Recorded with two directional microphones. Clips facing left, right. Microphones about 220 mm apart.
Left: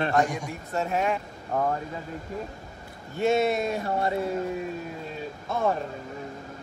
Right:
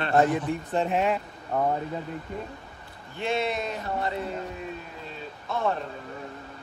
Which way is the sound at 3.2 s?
45° left (ahead or behind).